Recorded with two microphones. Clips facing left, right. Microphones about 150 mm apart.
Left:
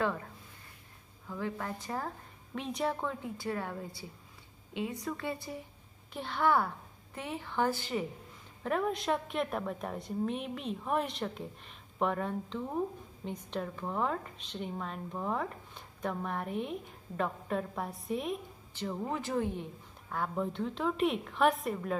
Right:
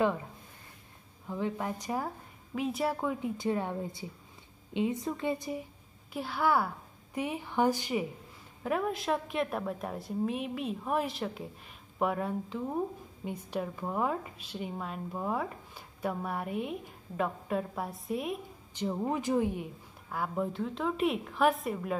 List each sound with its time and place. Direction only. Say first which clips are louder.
0.0 s a woman's voice: right 4 dB; 15° right (ahead or behind)
6.1 s a woman's voice: even; 5° right (ahead or behind)
8.6 s speech: right 1 dB; 5° right (ahead or behind)
18.7 s speech: right 4 dB; 15° right (ahead or behind); by 21.9 s centre (ahead or behind)